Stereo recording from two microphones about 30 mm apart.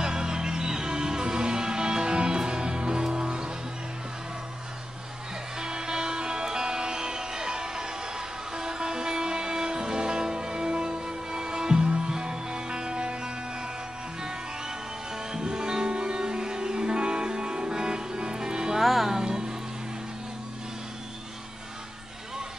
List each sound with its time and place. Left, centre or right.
0.0 s music: right
5.6 s music: right
15.3 s music: right
18.8 s music: centre
19.1 s music: right